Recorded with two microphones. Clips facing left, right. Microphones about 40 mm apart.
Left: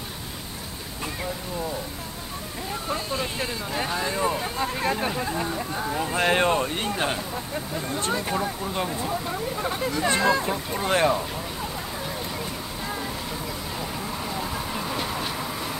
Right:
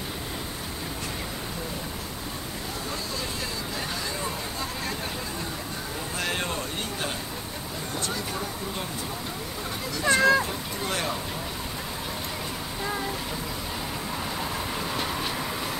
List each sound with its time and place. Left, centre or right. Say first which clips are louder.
2.9 s vehicle: left 6 dB; left
5.9 s speech: left 8 dB; left
12.8 s a sound: right 2 dB; centre